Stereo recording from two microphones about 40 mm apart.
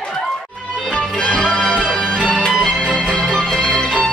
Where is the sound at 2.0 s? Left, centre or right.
Left.